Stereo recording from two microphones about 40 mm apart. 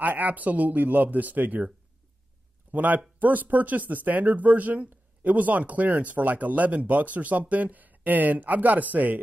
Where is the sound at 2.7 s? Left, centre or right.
Right.